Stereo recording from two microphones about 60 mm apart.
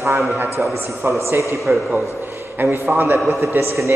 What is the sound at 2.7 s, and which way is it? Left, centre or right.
A man's voice, right.